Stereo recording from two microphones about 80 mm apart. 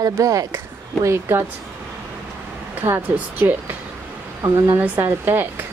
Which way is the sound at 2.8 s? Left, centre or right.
Right.